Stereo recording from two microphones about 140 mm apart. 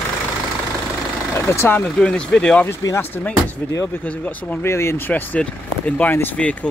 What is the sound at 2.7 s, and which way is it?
Speech, 20° left (ahead or behind).